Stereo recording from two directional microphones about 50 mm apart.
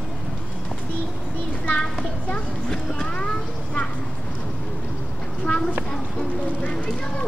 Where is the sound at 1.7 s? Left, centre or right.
Left.